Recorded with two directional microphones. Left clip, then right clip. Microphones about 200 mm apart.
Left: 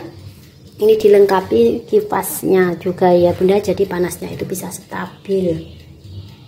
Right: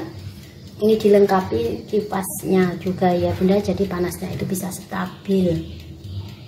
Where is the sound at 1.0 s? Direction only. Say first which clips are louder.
Left 3 dB; 45° left (ahead or behind).